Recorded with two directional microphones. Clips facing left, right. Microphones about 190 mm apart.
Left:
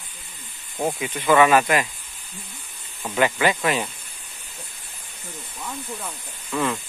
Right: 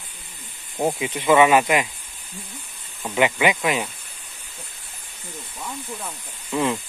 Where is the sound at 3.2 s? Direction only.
15° right (ahead or behind).